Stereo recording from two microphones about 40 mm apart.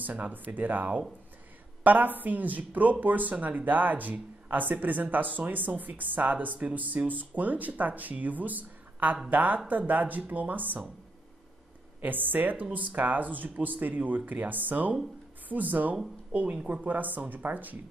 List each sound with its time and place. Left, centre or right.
0.0 s speech: right
12.0 s speech: right
16.3 s speech: right
16.8 s speech: right